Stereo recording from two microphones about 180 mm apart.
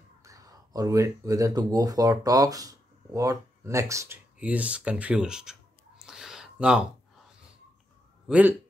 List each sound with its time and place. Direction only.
0.2 s speech: 20° right (ahead or behind)